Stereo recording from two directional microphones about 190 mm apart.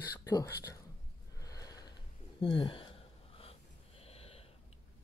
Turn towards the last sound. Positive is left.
turn(degrees=30)  # may be behind; listen again after turning